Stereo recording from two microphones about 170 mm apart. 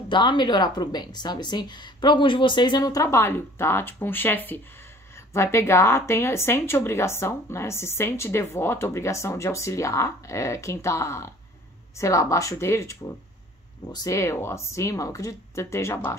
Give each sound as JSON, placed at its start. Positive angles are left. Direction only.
{"t": 0.1, "sound": "a woman's voice", "side_deg": 25}